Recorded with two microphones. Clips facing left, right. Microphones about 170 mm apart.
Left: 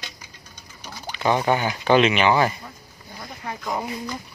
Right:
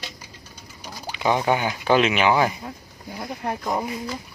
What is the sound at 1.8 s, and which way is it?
Speech, 5° right (ahead or behind).